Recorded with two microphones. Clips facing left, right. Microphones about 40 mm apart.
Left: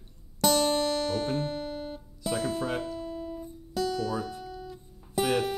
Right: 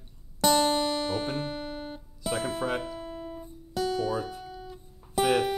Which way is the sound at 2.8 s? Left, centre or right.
Right.